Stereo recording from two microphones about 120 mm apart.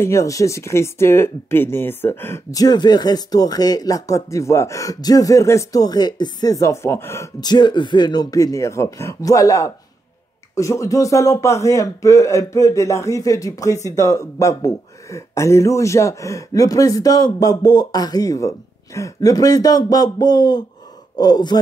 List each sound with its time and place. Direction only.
0.0 s speech: 25° left (ahead or behind)
7.3 s speech: 35° left (ahead or behind)